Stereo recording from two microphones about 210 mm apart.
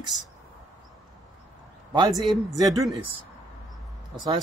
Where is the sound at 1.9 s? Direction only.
20° right (ahead or behind).